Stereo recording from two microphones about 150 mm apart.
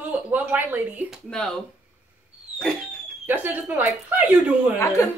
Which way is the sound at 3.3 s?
10° right (ahead or behind).